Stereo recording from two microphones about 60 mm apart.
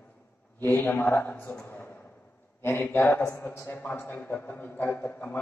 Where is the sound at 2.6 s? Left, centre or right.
Left.